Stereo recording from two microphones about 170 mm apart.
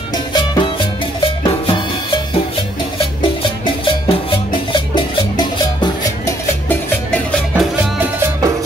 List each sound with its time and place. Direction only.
0.3 s music: 25° left (ahead or behind)
1.4 s drum: 25° left (ahead or behind)
3.8 s music: 30° left (ahead or behind)
5.8 s music: 20° left (ahead or behind)
7.5 s music: 10° right (ahead or behind)